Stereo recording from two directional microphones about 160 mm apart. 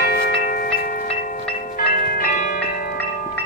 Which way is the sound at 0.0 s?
65° left (ahead or behind).